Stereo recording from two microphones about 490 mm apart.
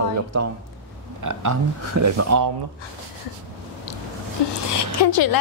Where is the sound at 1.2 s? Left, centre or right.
Right.